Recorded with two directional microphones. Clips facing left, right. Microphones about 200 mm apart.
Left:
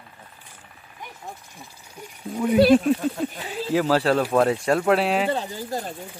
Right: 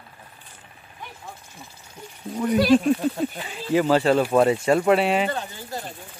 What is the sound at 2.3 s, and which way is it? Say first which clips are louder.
Speech: left 2 dB; 5° left (ahead or behind).